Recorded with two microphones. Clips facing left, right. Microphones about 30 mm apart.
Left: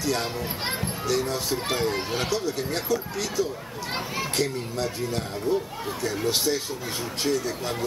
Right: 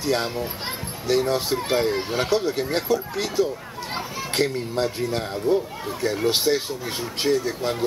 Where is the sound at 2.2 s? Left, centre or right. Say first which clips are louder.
Right 4 dB; right.